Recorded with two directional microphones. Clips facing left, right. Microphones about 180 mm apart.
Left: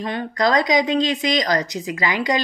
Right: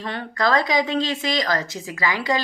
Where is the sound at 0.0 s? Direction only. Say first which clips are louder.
Left 3 dB; 15° left (ahead or behind).